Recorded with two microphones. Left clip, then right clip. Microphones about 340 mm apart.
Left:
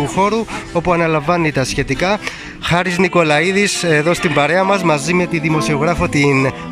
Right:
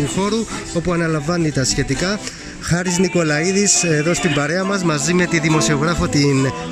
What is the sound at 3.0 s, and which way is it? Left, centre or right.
Speech, left.